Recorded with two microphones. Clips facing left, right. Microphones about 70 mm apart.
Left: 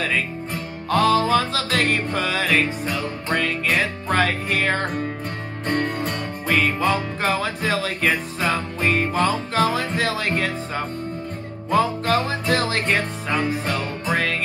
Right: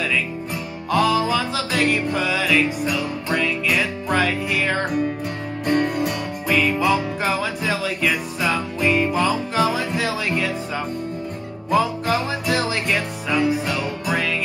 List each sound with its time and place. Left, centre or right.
0.8 s music: left
5.9 s music: left
11.7 s music: left